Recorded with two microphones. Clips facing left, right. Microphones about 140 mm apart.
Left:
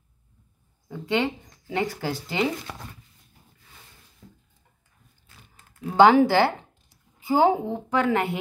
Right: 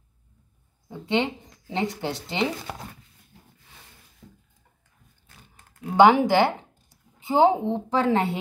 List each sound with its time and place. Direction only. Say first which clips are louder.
0.8 s speech: even; 20° right (ahead or behind)
5.9 s a woman's voice: even; 15° right (ahead or behind)